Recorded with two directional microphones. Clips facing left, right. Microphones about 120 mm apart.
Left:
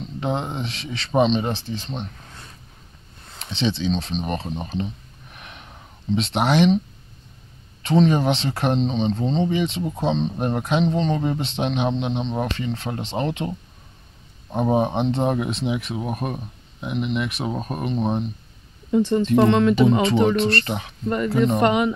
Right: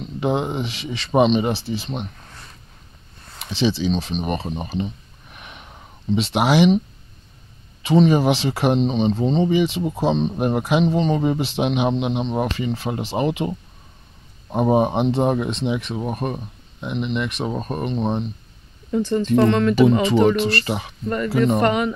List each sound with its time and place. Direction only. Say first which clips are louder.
0.2 s speech: right 4 dB; 5° right (ahead or behind)
3.3 s speech: right 3 dB; 5° right (ahead or behind)
7.8 s speech: right 2 dB; 5° right (ahead or behind)
18.9 s speech: left 1 dB; 15° left (ahead or behind)
20.2 s speech: right 1 dB; 5° right (ahead or behind)
21.6 s speech: left 1 dB; 15° left (ahead or behind)